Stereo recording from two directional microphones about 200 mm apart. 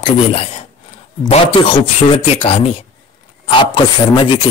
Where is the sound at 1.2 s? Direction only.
30° left (ahead or behind).